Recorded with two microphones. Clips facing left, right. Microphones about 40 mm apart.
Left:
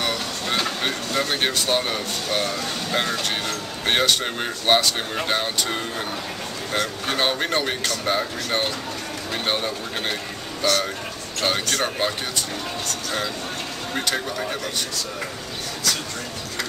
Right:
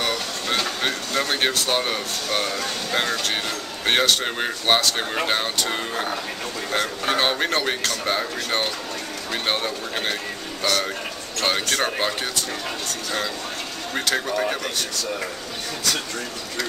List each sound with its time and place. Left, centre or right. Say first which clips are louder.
0.0 s train: even; centre
0.6 s a sound: even; centre
1.8 s speech: even; centre
5.1 s speech: right 1 dB; centre
13.9 s speech: right 2 dB; centre
14.3 s speech: right 4 dB; centre